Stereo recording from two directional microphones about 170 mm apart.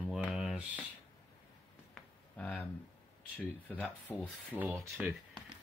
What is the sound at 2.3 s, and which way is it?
Speech, 10° left (ahead or behind).